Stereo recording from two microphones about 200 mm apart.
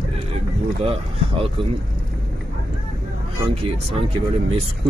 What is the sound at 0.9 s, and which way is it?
Speech, 30° right (ahead or behind).